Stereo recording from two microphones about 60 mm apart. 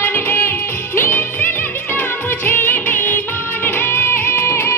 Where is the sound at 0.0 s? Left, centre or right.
Left.